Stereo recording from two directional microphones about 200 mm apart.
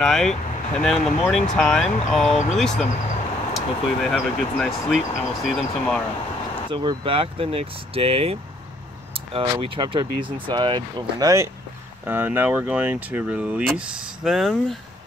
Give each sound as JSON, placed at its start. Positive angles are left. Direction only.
{"t": 0.0, "sound": "speech", "side_deg": 5}
{"t": 6.7, "sound": "speech", "side_deg": -25}